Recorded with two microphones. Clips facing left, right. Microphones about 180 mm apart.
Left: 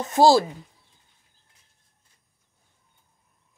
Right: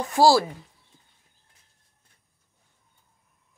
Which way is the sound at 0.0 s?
20° left (ahead or behind).